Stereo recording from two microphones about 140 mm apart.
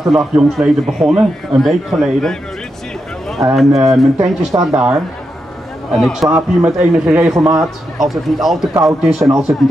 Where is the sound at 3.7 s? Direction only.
Centre (ahead or behind).